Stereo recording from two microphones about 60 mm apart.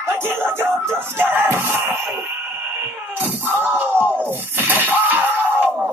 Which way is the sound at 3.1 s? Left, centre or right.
Right.